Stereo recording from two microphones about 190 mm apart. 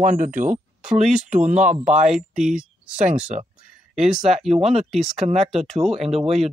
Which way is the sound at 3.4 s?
35° right (ahead or behind).